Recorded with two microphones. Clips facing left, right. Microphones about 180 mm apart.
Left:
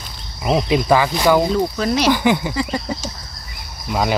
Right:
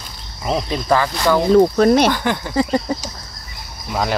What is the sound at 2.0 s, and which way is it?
Speech, 5° left (ahead or behind).